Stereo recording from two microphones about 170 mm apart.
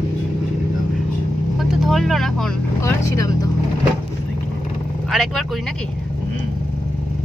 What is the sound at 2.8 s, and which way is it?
Vehicle, 20° left (ahead or behind).